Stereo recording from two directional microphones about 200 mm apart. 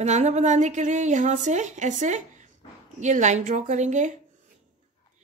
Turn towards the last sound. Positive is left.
turn(degrees=-35)  # may be behind; listen again after turning